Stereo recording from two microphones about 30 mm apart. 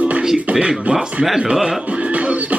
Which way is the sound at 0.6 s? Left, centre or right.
Right.